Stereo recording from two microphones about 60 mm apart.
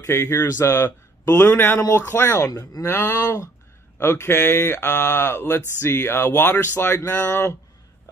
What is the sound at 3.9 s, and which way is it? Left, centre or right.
Speech, left.